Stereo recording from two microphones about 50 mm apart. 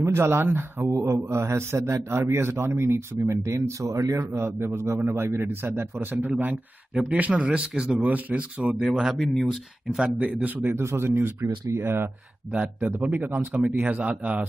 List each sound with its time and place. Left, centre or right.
0.0 s speech: right
0.8 s speech: right
2.0 s speech: right
5.0 s a man's voice: right
9.2 s speech: centre
9.5 s speech: centre
10.1 s a man's voice: right
10.7 s speech: right
13.1 s a man's voice: right